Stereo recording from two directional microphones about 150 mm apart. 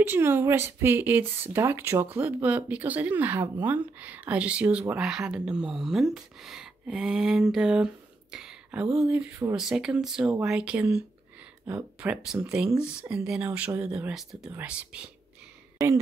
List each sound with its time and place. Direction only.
0.0 s speech: 15° right (ahead or behind)